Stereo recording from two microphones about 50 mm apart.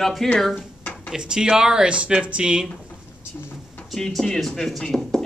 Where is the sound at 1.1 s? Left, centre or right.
Centre.